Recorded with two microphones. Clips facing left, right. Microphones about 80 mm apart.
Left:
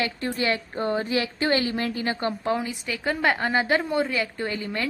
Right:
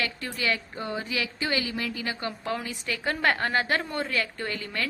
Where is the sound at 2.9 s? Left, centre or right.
Centre.